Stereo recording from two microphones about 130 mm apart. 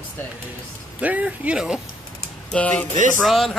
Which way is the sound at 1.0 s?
10° right (ahead or behind).